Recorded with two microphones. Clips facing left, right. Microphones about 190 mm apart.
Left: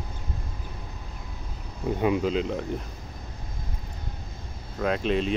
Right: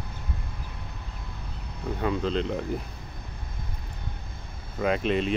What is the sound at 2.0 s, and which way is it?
Speech, 10° left (ahead or behind).